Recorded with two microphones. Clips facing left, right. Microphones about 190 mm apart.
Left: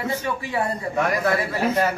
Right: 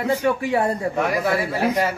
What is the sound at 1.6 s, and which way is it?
Speech, 15° right (ahead or behind).